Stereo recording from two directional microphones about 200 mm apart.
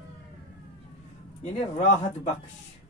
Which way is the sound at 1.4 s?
35° left (ahead or behind).